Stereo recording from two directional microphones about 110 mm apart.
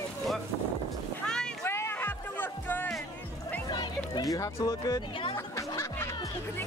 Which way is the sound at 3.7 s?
40° left (ahead or behind).